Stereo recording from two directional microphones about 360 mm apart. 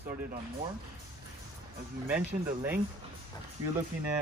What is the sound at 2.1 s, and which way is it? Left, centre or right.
Speech, centre.